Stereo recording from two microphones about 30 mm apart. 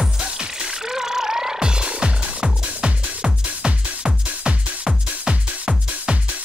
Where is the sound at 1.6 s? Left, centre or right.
Right.